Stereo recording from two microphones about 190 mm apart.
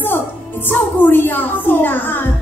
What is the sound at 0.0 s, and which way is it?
Music, 10° left (ahead or behind).